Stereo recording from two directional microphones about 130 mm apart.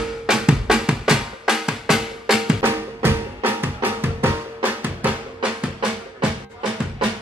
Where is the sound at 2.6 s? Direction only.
15° right (ahead or behind).